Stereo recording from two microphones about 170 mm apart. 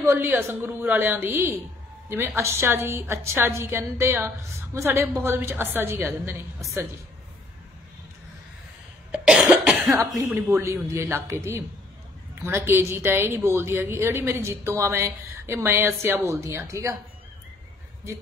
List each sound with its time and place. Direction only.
0.0 s a woman's voice: 15° right (ahead or behind)
9.1 s cough: centre (ahead or behind)
9.8 s a woman's voice: 15° right (ahead or behind)
12.4 s a woman's voice: 15° right (ahead or behind)